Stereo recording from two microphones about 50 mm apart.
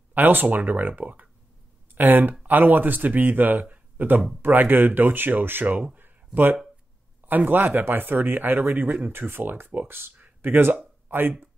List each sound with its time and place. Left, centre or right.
0.1 s speech: right
5.9 s a sound: right
7.2 s speech: right